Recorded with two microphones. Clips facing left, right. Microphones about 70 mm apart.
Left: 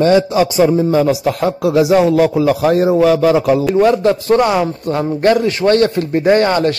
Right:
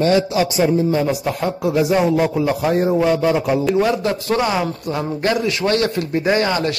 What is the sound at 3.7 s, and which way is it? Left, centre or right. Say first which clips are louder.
Speech: left 6 dB; left.